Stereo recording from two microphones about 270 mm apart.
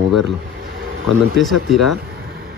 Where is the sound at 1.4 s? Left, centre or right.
Centre.